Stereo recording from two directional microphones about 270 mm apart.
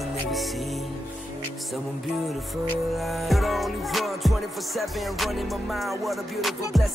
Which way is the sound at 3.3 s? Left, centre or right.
Centre.